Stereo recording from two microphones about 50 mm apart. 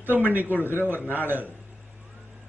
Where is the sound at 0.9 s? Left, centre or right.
Right.